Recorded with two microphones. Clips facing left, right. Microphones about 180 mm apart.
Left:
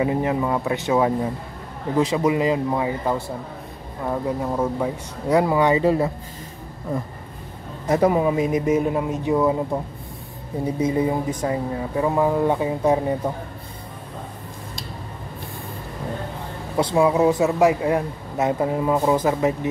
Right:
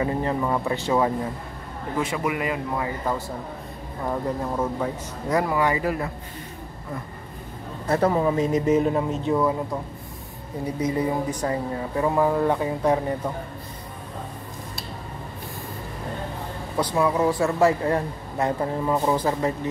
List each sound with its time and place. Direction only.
0.0 s speech: 10° left (ahead or behind)
4.0 s speech: 5° left (ahead or behind)
5.4 s speech: 20° left (ahead or behind)
7.9 s speech: 15° left (ahead or behind)
10.8 s speech: 25° left (ahead or behind)
16.7 s speech: 25° left (ahead or behind); by 19.7 s 10° left (ahead or behind)